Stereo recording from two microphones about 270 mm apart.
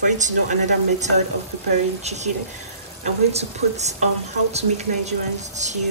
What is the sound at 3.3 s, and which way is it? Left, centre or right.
A woman's voice, right.